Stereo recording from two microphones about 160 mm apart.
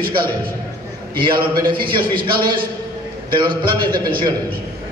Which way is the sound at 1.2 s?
30° right (ahead or behind).